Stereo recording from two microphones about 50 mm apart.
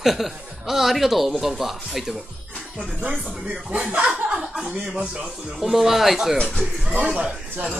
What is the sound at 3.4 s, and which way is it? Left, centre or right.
Speech, right.